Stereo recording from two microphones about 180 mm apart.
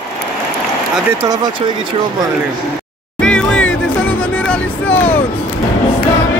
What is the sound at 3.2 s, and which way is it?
Music, 5° left (ahead or behind).